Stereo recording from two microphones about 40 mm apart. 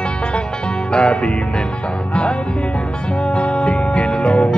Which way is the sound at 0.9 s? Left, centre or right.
Left.